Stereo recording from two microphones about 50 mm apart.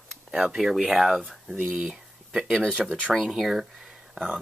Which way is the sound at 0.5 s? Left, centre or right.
Centre.